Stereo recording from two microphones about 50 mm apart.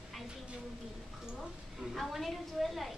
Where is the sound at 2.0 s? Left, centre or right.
Centre.